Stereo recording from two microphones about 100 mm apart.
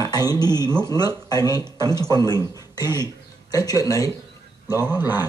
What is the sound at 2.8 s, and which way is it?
Speech, 25° right (ahead or behind).